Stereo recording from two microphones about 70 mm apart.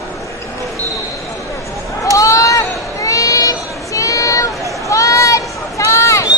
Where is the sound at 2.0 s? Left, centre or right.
Left.